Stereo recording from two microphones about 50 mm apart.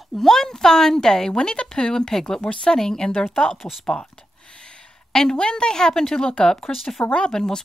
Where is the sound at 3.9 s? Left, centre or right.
Centre.